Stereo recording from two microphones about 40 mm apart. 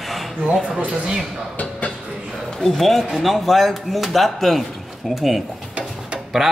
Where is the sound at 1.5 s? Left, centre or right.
Left.